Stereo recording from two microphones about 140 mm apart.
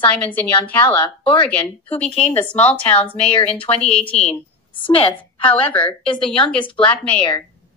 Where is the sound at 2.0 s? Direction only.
45° left (ahead or behind).